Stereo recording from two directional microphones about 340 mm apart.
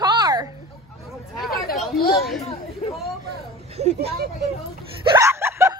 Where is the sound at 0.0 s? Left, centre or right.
Centre.